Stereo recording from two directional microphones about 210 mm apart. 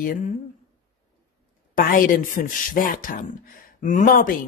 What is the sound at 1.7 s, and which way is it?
Speech, 40° left (ahead or behind).